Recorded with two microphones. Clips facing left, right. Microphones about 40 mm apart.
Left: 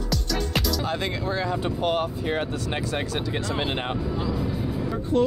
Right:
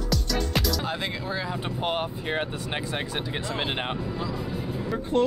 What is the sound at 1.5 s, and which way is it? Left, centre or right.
Speech, centre.